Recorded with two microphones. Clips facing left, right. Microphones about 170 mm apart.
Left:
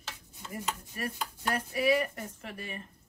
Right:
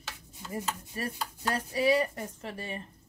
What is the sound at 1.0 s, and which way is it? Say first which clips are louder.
Dishes: right 2 dB; 30° right (ahead or behind).